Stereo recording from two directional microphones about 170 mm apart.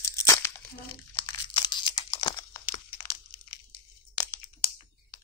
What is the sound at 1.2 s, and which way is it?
Crumpling, 25° left (ahead or behind).